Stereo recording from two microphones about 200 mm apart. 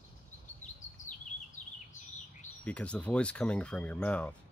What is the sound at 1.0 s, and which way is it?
Chirp, 35° left (ahead or behind).